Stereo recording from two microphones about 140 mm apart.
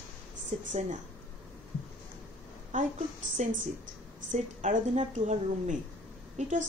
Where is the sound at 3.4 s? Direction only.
55° right (ahead or behind).